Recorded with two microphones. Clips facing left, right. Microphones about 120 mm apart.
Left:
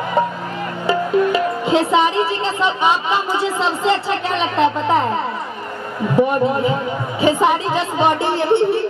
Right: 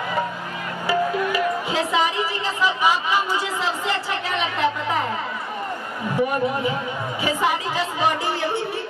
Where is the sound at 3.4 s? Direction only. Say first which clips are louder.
Left 6 dB; 25° left (ahead or behind).